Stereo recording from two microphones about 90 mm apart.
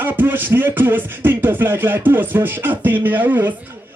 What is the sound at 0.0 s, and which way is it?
Music, 20° right (ahead or behind).